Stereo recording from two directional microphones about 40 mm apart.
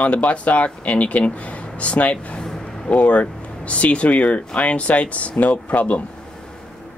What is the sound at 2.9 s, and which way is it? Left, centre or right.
Speech, left.